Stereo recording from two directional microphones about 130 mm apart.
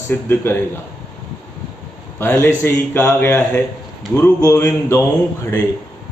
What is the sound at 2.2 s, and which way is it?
Speech, 25° left (ahead or behind).